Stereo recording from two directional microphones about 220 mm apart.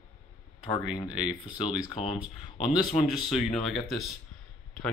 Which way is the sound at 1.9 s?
30° left (ahead or behind).